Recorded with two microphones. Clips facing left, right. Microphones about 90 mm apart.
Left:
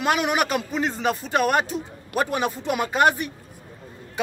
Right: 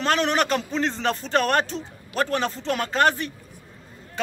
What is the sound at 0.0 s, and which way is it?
Speech, 10° left (ahead or behind).